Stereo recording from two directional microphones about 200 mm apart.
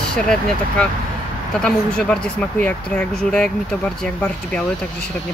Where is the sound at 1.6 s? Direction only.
5° left (ahead or behind).